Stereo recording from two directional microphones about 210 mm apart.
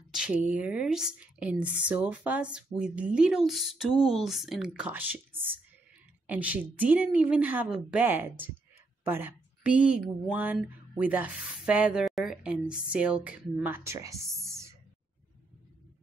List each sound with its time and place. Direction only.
0.1 s a woman's voice: 5° right (ahead or behind)